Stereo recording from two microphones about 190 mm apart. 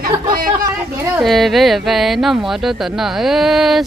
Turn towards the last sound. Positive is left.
turn(degrees=0)  # may be behind; listen again after turning